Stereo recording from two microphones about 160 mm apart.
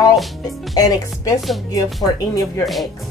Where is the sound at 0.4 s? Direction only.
25° left (ahead or behind).